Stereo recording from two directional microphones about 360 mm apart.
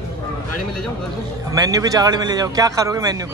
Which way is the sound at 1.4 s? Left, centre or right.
Centre.